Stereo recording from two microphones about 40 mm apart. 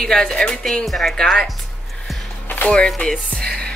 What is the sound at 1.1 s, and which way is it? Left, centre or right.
Speech, centre.